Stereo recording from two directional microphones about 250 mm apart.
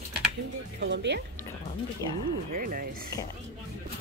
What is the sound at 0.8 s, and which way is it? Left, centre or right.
Speech, right.